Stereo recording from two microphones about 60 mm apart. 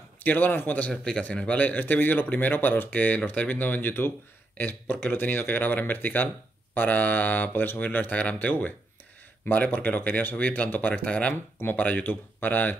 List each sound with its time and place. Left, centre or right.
0.2 s speech: left